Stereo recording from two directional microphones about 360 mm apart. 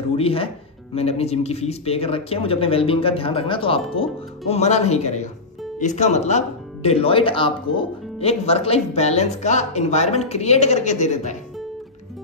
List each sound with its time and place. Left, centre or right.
0.1 s speech: centre